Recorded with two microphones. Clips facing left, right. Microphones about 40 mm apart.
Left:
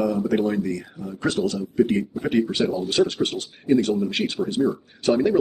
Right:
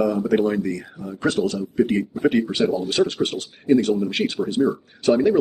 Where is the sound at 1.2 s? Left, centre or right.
Right.